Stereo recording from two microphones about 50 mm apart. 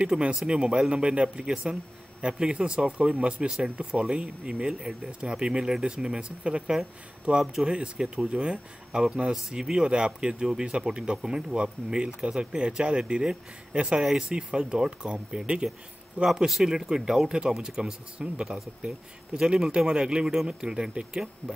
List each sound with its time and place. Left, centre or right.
0.1 s speech: centre
1.5 s speech: centre
13.9 s speech: centre